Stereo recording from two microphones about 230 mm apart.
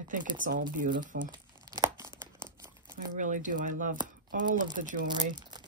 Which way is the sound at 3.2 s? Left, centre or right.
Right.